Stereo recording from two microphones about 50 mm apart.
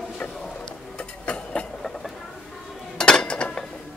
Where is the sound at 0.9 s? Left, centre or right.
Left.